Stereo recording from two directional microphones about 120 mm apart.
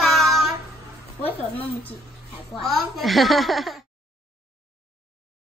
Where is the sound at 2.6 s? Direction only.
Centre (ahead or behind).